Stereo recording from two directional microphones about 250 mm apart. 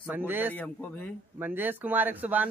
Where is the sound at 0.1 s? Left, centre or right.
Centre.